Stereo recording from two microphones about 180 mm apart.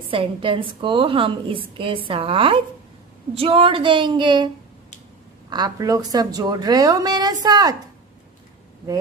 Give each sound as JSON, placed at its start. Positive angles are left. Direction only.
{"t": 0.1, "sound": "a woman's voice", "side_deg": -30}
{"t": 5.5, "sound": "a woman's voice", "side_deg": -20}